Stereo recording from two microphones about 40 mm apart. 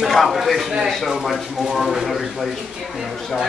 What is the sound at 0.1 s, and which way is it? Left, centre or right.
Speech, centre.